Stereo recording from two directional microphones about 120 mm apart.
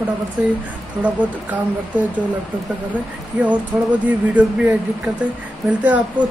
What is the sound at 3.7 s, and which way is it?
Speech, 15° right (ahead or behind).